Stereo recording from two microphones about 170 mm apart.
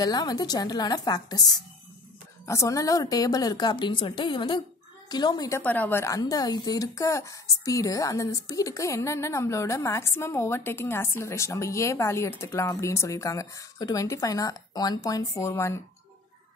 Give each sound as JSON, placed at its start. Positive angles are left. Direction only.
{"t": 0.0, "sound": "a woman's voice", "side_deg": 25}
{"t": 2.4, "sound": "a woman's voice", "side_deg": 15}
{"t": 5.6, "sound": "a woman's voice", "side_deg": 10}